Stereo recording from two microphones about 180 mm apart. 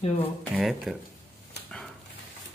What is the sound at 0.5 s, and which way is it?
Speech, centre (ahead or behind).